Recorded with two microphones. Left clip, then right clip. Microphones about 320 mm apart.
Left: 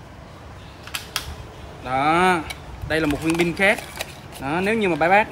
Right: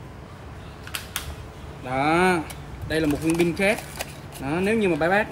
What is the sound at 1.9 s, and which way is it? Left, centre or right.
Speech, centre.